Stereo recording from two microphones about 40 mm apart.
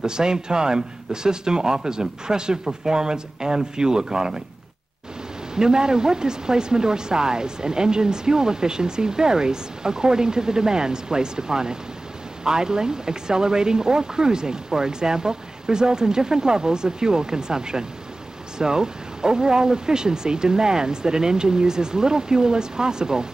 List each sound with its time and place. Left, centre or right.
0.0 s speech: centre
5.5 s speech: centre